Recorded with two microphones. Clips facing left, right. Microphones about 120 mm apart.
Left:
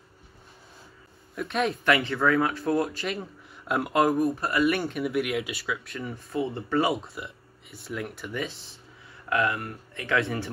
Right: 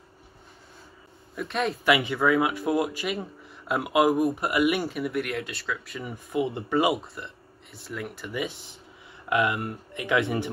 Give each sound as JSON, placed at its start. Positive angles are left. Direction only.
{"t": 1.3, "sound": "speech", "side_deg": 0}
{"t": 4.2, "sound": "speech", "side_deg": -15}
{"t": 4.7, "sound": "speech", "side_deg": 0}
{"t": 6.1, "sound": "speech", "side_deg": -15}
{"t": 6.9, "sound": "speech", "side_deg": 0}
{"t": 9.3, "sound": "speech", "side_deg": -20}